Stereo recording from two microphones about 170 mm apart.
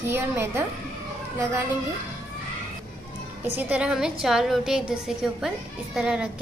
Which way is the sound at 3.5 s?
10° right (ahead or behind).